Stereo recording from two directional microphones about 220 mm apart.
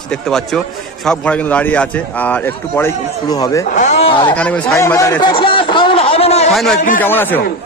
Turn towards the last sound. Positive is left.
turn(degrees=10)  # may be behind; listen again after turning